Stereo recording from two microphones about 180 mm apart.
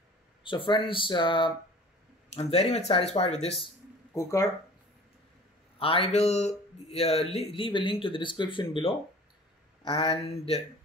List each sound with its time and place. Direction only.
0.4 s speech: 25° left (ahead or behind)
4.1 s speech: 15° left (ahead or behind)
5.8 s speech: 30° left (ahead or behind)